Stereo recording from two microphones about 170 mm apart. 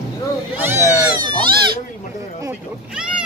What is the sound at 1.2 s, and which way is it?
Speech, 25° right (ahead or behind).